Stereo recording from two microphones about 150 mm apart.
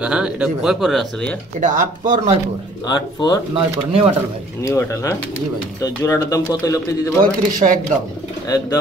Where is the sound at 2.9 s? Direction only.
25° left (ahead or behind).